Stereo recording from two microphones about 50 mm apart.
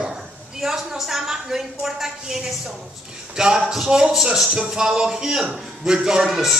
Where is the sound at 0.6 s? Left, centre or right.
Centre.